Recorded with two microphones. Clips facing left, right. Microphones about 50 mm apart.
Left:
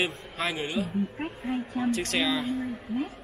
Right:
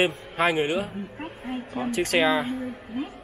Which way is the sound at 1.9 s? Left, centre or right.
Right.